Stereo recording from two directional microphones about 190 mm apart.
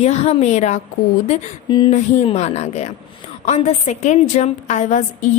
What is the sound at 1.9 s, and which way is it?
A woman's voice, 35° left (ahead or behind).